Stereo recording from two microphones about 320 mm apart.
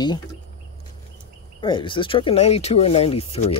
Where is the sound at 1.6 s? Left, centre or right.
Centre.